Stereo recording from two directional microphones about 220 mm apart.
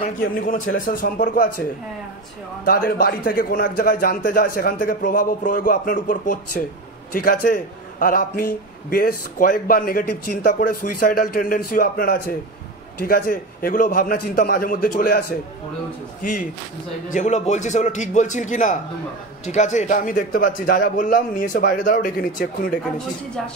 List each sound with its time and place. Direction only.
0.0 s a man's voice: 40° left (ahead or behind)
2.6 s a man's voice: 40° left (ahead or behind)
17.1 s a man's voice: 35° left (ahead or behind)